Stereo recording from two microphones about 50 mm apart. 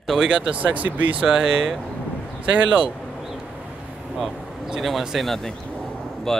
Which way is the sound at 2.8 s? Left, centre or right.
Centre.